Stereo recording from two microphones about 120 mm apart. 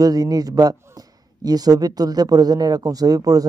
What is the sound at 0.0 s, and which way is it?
A man's voice, 30° right (ahead or behind).